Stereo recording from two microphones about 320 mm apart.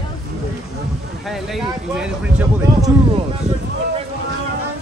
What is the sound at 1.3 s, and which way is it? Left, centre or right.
Speech, centre.